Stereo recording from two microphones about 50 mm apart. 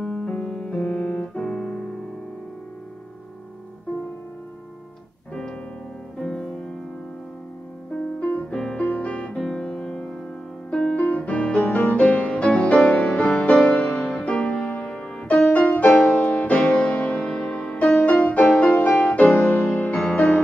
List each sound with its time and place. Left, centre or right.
0.0 s music: left
0.7 s piano: left
1.4 s keyboard: centre
6.1 s music: centre
8.5 s music: centre
8.7 s music: left
9.4 s music: centre
11.0 s piano: left
11.7 s music: left
12.0 s music: left
19.3 s music: left
19.9 s music: left